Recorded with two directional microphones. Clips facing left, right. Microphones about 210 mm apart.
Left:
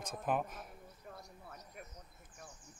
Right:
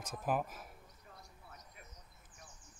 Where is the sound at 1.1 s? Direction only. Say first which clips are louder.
Left 6 dB; 50° left (ahead or behind).